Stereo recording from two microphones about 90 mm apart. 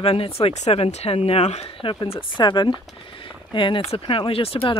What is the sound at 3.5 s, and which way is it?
Speech, 65° left (ahead or behind).